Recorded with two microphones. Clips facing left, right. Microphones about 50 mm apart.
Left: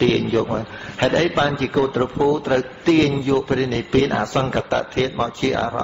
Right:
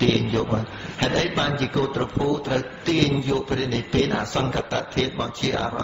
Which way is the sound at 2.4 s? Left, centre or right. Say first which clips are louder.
Left 6 dB; left.